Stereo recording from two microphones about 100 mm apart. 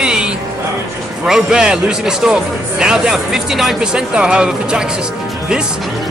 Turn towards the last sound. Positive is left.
turn(degrees=-5)  # may be behind; listen again after turning